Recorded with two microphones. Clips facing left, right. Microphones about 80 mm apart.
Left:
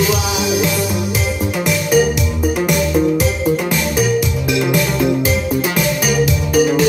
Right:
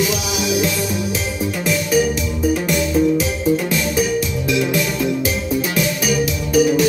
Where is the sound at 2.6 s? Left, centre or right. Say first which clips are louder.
Left 4 dB; left.